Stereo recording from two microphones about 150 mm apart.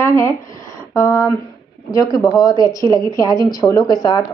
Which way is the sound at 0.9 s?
20° left (ahead or behind).